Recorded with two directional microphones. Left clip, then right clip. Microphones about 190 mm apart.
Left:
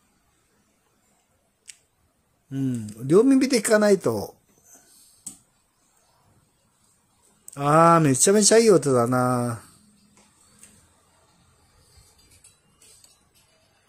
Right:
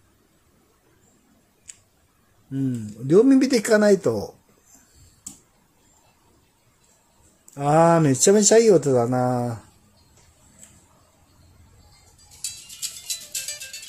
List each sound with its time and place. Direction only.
1.7 s scissors: 10° left (ahead or behind)
2.5 s speech: 15° left (ahead or behind)
7.5 s speech: 15° left (ahead or behind)